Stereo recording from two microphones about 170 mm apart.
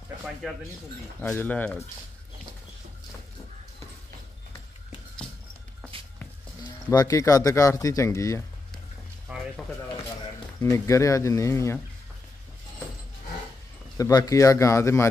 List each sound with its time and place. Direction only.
1.2 s speech: 10° left (ahead or behind)
6.9 s speech: 20° left (ahead or behind)
9.3 s a sound: 5° right (ahead or behind)
10.6 s speech: 15° left (ahead or behind)
13.9 s speech: 20° left (ahead or behind)